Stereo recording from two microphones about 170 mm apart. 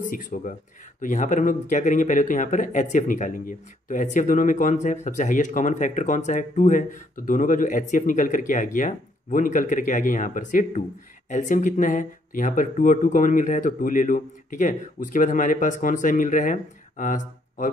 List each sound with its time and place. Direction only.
0.1 s speech: 50° left (ahead or behind)